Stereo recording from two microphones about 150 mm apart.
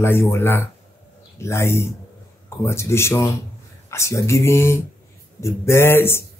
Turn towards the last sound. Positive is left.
turn(degrees=15)  # may be behind; listen again after turning